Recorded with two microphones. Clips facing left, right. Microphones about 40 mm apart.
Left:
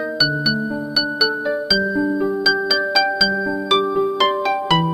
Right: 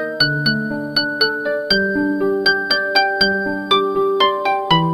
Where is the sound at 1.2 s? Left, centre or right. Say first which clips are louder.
Right 1 dB; centre.